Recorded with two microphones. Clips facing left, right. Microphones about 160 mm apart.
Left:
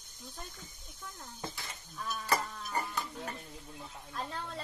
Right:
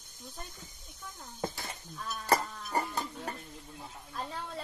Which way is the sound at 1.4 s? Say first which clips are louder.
Right 7 dB; 45° right (ahead or behind).